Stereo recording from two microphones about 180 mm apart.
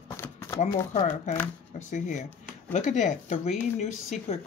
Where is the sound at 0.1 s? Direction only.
15° left (ahead or behind).